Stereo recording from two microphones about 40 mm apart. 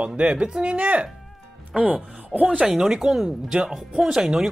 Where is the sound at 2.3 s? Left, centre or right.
Centre.